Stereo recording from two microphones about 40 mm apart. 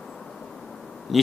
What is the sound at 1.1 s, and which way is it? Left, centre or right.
Speech, centre.